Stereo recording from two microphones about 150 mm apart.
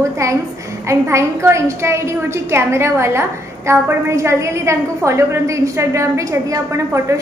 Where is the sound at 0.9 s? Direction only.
20° right (ahead or behind).